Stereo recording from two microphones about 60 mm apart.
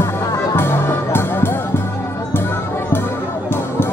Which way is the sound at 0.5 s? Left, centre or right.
Left.